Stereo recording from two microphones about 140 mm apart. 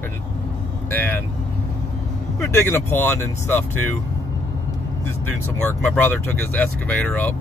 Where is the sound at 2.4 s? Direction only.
20° left (ahead or behind).